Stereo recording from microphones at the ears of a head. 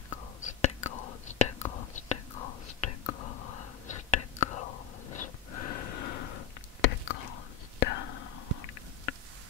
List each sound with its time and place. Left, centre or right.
0.1 s whispering: left